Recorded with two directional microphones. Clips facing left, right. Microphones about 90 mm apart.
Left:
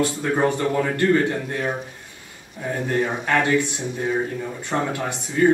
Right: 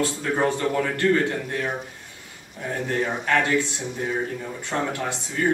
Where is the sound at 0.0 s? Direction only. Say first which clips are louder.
Left 2 dB; 15° left (ahead or behind).